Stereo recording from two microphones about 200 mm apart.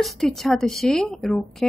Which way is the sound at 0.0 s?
Centre (ahead or behind).